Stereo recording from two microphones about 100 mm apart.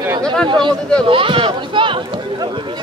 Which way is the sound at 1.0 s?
60° right (ahead or behind).